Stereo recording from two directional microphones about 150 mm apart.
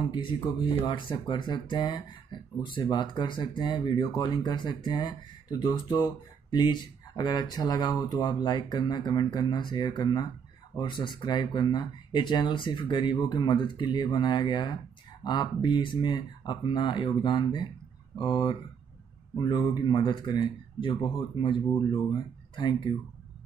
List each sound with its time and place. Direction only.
0.8 s speech: 30° left (ahead or behind)